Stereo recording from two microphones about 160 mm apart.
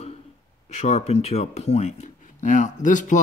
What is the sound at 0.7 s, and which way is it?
Speech, 45° left (ahead or behind).